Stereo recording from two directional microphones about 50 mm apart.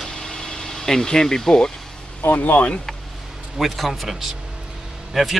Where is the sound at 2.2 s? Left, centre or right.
Left.